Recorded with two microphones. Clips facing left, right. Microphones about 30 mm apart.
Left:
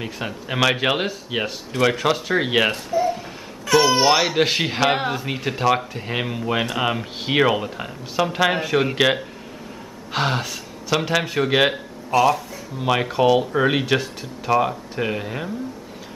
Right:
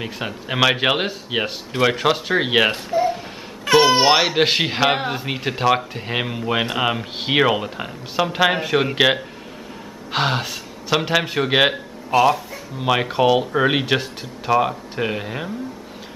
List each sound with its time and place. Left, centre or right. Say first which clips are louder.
0.0 s speech: right 1 dB; centre
2.9 s a sound: right 1 dB; right
3.6 s music: right 2 dB; right
4.3 s speech: right 2 dB; centre